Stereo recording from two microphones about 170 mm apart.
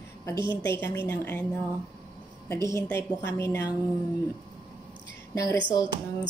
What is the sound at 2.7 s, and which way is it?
A woman's voice, 15° left (ahead or behind).